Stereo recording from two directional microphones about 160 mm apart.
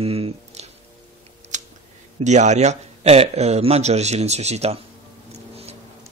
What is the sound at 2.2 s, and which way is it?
A man's voice, 45° right (ahead or behind).